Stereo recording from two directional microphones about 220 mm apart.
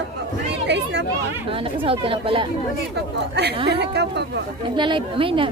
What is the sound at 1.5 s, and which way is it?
Speech, 25° right (ahead or behind).